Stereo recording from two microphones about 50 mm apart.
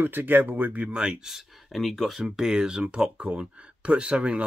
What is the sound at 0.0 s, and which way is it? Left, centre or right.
Speech, right.